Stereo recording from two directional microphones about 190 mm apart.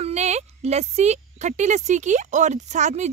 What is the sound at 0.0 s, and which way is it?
Speech, 35° right (ahead or behind).